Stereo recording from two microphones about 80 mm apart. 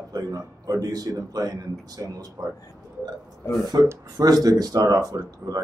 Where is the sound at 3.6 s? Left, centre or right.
Right.